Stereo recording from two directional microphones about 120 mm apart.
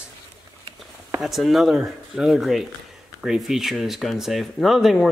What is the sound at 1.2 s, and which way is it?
Speech, centre (ahead or behind).